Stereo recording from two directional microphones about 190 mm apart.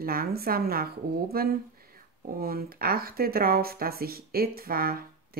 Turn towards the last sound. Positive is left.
turn(degrees=-50)  # may be behind; listen again after turning